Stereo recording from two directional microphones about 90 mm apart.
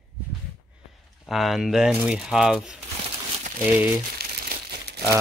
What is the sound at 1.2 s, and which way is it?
Speech, centre (ahead or behind).